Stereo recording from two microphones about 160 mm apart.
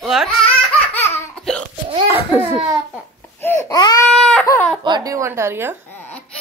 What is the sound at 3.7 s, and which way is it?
Baby cry, 25° left (ahead or behind).